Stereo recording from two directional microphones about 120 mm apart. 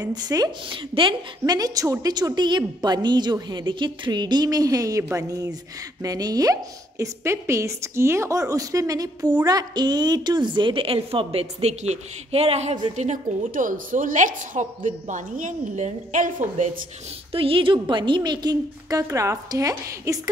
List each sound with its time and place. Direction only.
0.0 s a woman's voice: 35° right (ahead or behind)
0.7 s a woman's voice: 45° right (ahead or behind)
1.4 s a woman's voice: 30° right (ahead or behind); by 12.7 s 60° right (ahead or behind)
12.9 s a woman's voice: 85° right
17.3 s a woman's voice: 50° right (ahead or behind); by 20.2 s 25° right (ahead or behind)